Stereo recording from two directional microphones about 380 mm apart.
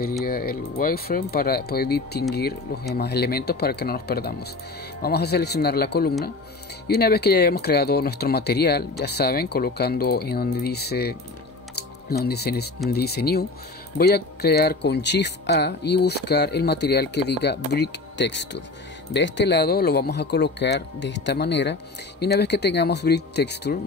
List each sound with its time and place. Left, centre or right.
0.2 s speech: left
11.7 s music: left
12.9 s speech: left